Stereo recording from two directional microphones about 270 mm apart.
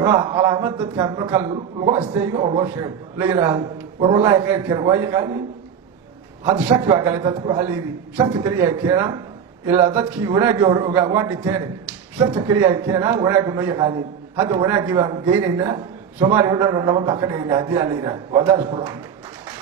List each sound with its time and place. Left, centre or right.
0.0 s a man's voice: right
6.4 s a man's voice: centre